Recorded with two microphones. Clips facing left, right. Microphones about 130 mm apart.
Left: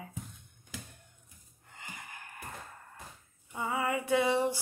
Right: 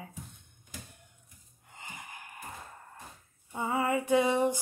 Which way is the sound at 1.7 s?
20° right (ahead or behind).